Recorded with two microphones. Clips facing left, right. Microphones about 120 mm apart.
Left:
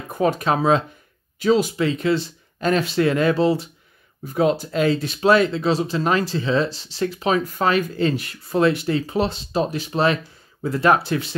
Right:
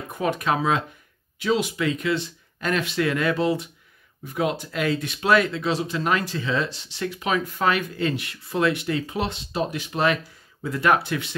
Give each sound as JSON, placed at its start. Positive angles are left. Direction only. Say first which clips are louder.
{"t": 0.1, "sound": "speech", "louder": "left 4 dB", "side_deg": 35}